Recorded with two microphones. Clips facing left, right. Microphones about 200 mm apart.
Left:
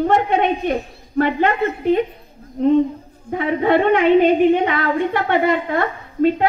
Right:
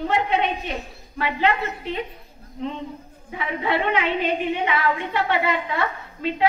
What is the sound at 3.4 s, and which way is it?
Speech, 50° left (ahead or behind).